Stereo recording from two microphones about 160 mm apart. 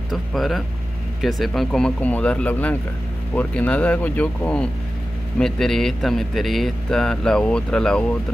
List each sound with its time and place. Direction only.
0.1 s speech: centre (ahead or behind)